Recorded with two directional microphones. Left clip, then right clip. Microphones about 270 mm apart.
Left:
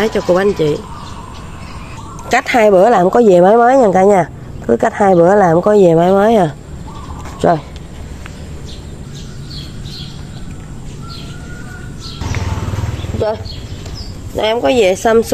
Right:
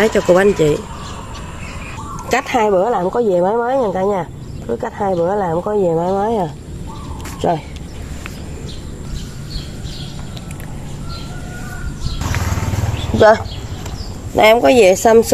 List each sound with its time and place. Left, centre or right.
0.0 s speech: centre
2.2 s speech: centre
2.8 s speech: left
7.4 s speech: centre
14.3 s speech: right
14.6 s speech: centre